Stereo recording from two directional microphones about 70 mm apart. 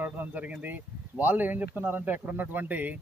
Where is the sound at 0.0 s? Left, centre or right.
Right.